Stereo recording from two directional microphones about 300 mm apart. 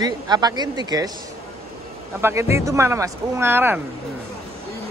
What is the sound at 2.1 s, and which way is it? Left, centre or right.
A woman's voice, centre.